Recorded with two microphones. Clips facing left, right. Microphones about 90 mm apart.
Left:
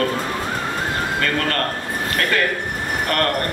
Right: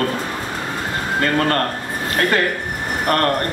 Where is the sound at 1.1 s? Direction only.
30° right (ahead or behind).